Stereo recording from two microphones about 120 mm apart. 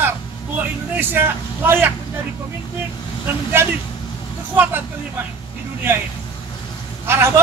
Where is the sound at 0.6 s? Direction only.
20° right (ahead or behind).